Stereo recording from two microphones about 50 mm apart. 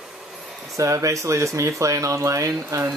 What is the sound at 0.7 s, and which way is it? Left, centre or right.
Speech, right.